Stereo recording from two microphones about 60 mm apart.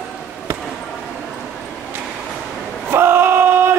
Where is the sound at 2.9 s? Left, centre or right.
Right.